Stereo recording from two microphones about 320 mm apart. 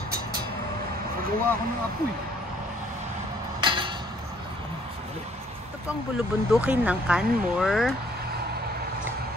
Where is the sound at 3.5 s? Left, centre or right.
Centre.